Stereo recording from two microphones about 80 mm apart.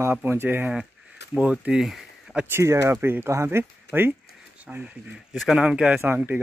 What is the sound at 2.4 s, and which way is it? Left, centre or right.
Speech, right.